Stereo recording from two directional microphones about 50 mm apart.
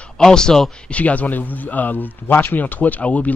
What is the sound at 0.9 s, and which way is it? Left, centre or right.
Speech, left.